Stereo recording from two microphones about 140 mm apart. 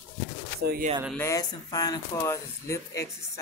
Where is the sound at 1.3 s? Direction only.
25° left (ahead or behind).